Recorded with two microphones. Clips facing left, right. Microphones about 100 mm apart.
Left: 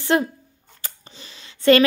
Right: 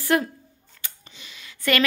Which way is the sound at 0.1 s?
25° left (ahead or behind).